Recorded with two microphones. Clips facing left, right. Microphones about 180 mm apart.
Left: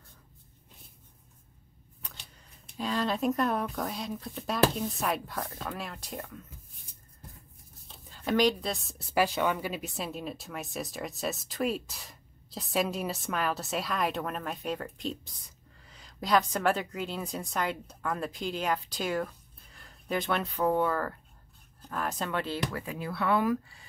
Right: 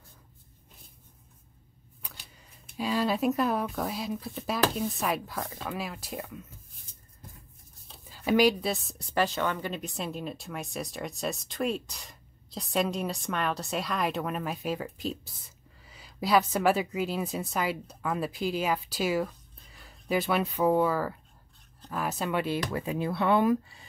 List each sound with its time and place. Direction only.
2.0 s a sound: 5° right (ahead or behind)
2.8 s a woman's voice: 5° right (ahead or behind)
7.9 s a woman's voice: 5° right (ahead or behind)
22.7 s speech: 25° right (ahead or behind)